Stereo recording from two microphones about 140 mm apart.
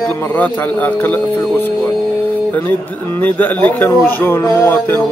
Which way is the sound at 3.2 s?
15° left (ahead or behind).